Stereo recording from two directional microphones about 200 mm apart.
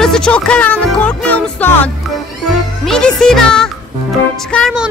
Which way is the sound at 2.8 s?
5° left (ahead or behind).